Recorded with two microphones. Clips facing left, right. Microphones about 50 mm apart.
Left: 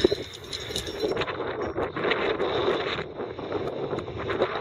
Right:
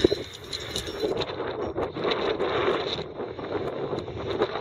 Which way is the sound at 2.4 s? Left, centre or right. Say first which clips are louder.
Even; right.